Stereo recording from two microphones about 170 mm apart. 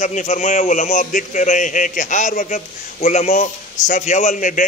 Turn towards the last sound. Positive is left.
turn(degrees=50)  # may be behind; listen again after turning